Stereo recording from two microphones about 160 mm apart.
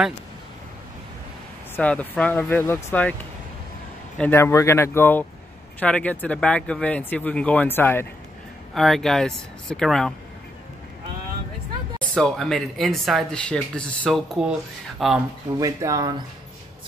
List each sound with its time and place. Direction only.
1.8 s speech: 10° left (ahead or behind)
4.2 s speech: 15° left (ahead or behind)
8.7 s speech: centre (ahead or behind)
12.0 s speech: 5° left (ahead or behind)
15.6 s speech: 20° right (ahead or behind)